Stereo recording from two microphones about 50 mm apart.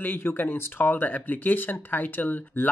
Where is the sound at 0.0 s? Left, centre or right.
Left.